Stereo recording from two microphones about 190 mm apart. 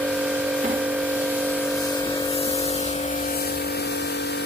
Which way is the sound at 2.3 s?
35° left (ahead or behind).